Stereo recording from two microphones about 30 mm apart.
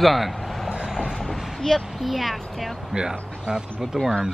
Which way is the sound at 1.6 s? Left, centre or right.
Centre.